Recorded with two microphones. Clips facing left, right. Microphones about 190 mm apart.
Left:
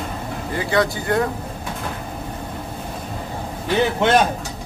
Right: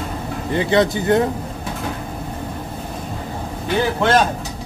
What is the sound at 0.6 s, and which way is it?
Speech, 20° right (ahead or behind).